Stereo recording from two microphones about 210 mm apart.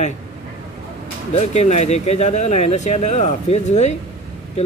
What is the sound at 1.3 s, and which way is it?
Speech, 30° left (ahead or behind).